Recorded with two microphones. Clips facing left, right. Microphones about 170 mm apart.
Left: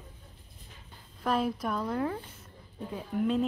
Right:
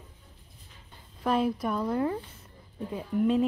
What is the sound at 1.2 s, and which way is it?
Speech, 5° right (ahead or behind).